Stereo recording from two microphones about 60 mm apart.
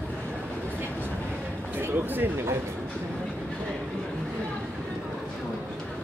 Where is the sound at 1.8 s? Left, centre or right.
Right.